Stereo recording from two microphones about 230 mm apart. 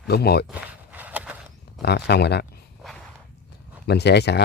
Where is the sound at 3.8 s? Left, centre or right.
Left.